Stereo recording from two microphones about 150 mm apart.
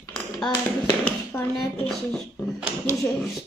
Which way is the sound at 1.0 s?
15° left (ahead or behind).